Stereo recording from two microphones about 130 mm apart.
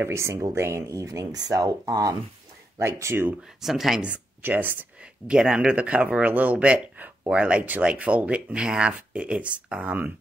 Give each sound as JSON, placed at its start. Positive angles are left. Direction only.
{"t": 0.0, "sound": "speech", "side_deg": -20}
{"t": 3.6, "sound": "speech", "side_deg": 0}